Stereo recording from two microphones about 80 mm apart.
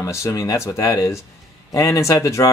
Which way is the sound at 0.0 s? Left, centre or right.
Left.